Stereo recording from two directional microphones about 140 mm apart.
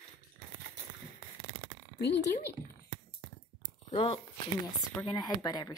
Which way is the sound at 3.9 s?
40° left (ahead or behind).